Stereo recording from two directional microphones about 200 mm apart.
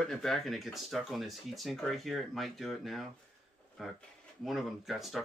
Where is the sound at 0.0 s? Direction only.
Centre (ahead or behind).